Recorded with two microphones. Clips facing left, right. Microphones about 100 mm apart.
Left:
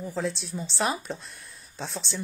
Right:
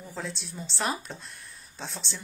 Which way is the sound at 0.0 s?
Centre (ahead or behind).